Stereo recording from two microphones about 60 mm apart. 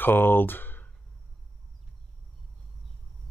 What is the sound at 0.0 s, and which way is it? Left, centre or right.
Speech, left.